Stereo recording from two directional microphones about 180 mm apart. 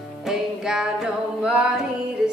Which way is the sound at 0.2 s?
5° right (ahead or behind).